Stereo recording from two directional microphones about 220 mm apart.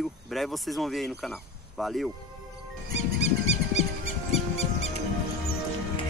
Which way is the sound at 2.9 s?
30° left (ahead or behind).